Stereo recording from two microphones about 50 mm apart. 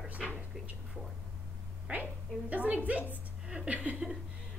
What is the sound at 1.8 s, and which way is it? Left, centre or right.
A woman's voice, right.